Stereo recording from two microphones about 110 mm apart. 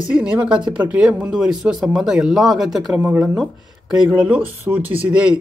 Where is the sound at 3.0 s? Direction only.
20° right (ahead or behind).